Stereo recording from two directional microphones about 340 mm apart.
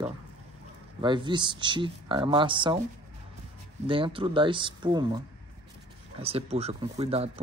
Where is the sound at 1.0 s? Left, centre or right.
Centre.